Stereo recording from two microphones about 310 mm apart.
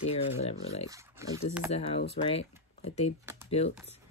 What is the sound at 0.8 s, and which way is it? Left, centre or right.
Speech, centre.